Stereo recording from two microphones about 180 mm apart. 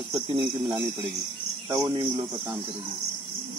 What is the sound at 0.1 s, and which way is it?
Speech, 25° right (ahead or behind).